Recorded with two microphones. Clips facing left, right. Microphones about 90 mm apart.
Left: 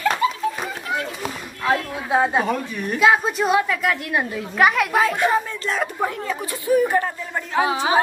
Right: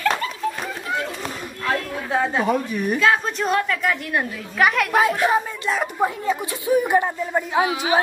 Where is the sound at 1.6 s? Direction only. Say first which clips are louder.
Left 3 dB; 10° left (ahead or behind); by 7.6 s 15° right (ahead or behind).